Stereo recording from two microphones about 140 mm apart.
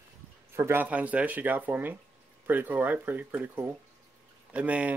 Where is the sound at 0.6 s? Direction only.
15° right (ahead or behind).